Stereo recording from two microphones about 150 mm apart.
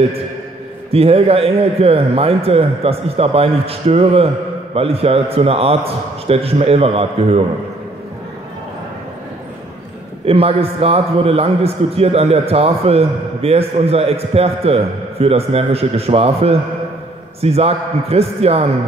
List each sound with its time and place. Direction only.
0.9 s a man's voice: 40° right (ahead or behind)
10.2 s a man's voice: 40° right (ahead or behind)